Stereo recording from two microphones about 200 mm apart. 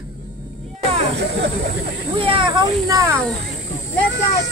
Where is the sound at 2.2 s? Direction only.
25° right (ahead or behind).